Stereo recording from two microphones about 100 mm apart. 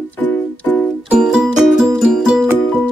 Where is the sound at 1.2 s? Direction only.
5° right (ahead or behind).